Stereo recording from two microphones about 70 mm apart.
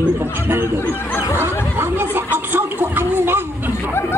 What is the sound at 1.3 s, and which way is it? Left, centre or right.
Chatter, right.